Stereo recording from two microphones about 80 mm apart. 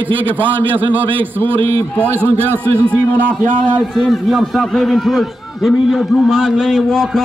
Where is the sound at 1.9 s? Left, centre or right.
Right.